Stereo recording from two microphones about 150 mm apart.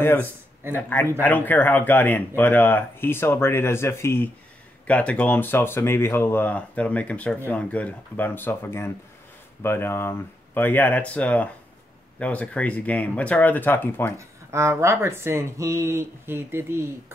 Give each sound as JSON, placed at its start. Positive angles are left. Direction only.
{"t": 0.0, "sound": "speech", "side_deg": 15}
{"t": 14.1, "sound": "speech", "side_deg": -20}